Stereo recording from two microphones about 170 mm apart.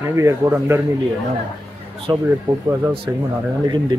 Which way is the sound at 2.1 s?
25° right (ahead or behind).